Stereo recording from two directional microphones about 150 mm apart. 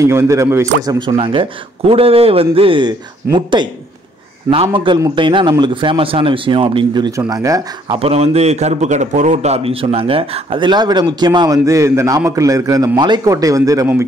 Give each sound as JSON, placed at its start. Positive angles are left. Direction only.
{"t": 0.0, "sound": "a man's voice", "side_deg": -20}
{"t": 0.9, "sound": "speech", "side_deg": -35}
{"t": 8.0, "sound": "a man's voice", "side_deg": -45}